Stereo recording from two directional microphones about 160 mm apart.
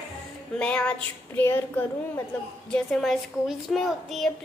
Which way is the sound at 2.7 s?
Centre (ahead or behind).